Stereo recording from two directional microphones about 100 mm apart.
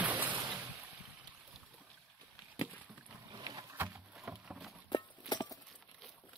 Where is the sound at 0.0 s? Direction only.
15° right (ahead or behind).